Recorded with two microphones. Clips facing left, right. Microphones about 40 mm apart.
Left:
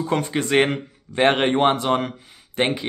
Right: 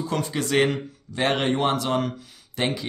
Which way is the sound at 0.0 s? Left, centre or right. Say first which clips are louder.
Left 4 dB; left.